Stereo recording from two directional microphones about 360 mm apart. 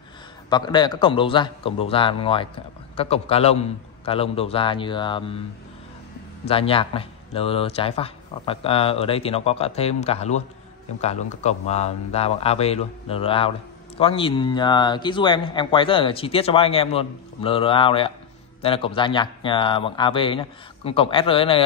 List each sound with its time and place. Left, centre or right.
0.5 s a man's voice: centre
6.4 s a man's voice: centre